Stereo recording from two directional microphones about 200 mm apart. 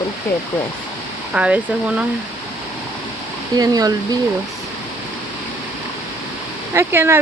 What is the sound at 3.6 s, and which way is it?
Speech, 20° right (ahead or behind).